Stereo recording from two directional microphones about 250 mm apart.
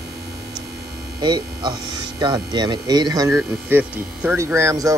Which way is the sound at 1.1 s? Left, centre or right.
Centre.